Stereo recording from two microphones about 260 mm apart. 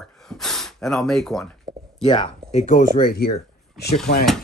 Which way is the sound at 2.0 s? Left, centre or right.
Centre.